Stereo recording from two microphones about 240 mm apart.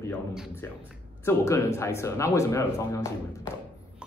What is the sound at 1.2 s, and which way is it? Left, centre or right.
Speech, centre.